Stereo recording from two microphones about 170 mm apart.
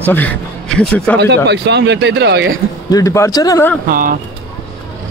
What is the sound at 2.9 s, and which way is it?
Speech, 20° left (ahead or behind).